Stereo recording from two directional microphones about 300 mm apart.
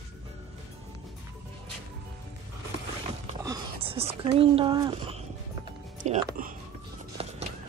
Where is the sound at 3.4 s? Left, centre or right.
Centre.